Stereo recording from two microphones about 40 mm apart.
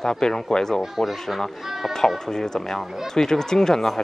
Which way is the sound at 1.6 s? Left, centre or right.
Centre.